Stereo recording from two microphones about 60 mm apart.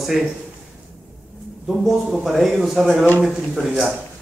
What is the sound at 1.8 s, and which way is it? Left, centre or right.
A man's voice, centre.